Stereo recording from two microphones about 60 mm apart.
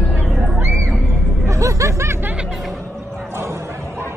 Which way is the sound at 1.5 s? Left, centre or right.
Right.